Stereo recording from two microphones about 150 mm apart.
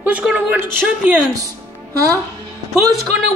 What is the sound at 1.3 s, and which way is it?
Music, 20° right (ahead or behind).